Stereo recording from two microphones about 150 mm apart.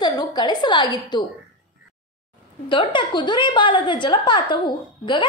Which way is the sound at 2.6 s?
35° left (ahead or behind).